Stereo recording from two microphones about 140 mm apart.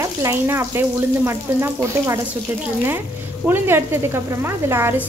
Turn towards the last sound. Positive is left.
turn(degrees=-15)  # may be behind; listen again after turning